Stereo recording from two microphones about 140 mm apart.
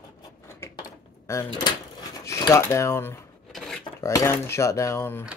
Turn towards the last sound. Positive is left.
turn(degrees=15)  # may be behind; listen again after turning